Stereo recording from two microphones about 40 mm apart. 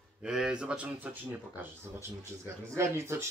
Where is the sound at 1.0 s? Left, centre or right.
Right.